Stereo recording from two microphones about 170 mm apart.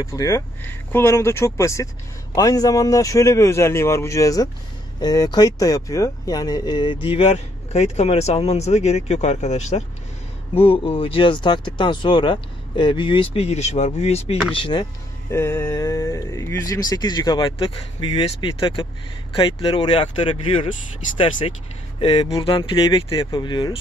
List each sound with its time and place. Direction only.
0.0 s speech: 20° left (ahead or behind)
15.3 s speech: 15° left (ahead or behind)